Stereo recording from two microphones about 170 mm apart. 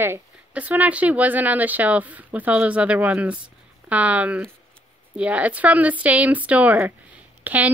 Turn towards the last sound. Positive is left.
turn(degrees=-10)  # may be behind; listen again after turning